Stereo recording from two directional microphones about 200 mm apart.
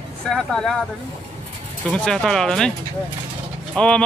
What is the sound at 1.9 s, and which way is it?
Speech, 5° left (ahead or behind).